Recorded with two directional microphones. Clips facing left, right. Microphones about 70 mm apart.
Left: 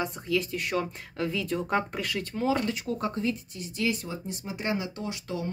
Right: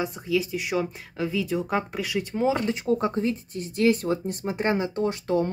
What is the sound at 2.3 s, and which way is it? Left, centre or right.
Speech, right.